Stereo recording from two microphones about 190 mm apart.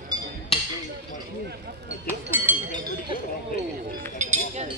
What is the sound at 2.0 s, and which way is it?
Chink, 10° right (ahead or behind).